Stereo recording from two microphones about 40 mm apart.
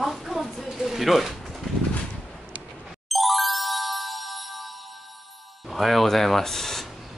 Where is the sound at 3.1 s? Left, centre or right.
Centre.